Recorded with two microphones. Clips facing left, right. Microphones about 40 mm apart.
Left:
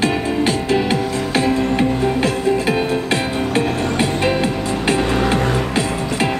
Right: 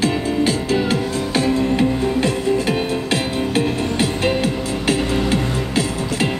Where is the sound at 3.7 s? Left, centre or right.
Left.